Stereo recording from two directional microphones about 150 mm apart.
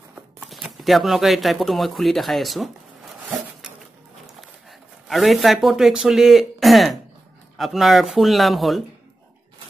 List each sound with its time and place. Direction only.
0.1 s speech: 5° right (ahead or behind)
5.0 s speech: centre (ahead or behind)